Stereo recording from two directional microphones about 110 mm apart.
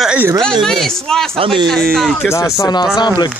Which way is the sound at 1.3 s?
55° right (ahead or behind).